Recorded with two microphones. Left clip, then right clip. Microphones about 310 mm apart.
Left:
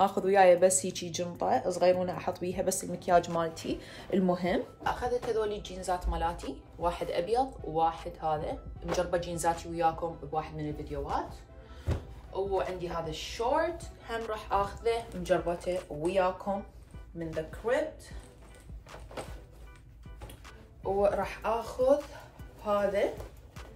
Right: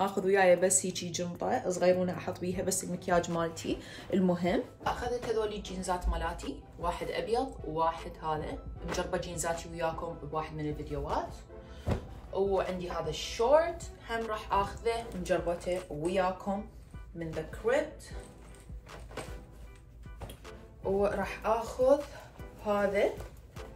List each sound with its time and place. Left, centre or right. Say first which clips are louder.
0.0 s a woman's voice: left 3 dB; centre
12.3 s a man's voice: right 1 dB; centre
21.0 s speech: left 5 dB; centre